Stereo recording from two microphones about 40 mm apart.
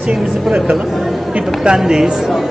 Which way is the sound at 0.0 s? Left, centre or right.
Centre.